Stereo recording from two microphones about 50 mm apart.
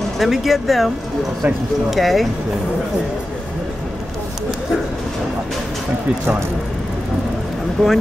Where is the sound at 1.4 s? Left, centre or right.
Right.